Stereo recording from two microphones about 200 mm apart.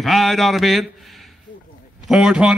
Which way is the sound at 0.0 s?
Centre (ahead or behind).